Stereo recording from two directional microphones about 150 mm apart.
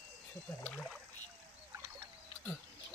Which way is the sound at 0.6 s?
5° left (ahead or behind).